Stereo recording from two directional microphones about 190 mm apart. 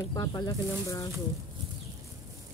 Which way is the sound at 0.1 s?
20° left (ahead or behind).